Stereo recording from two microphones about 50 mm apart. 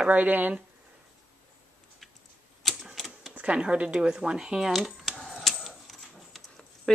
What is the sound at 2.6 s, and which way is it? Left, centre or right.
Typewriter, centre.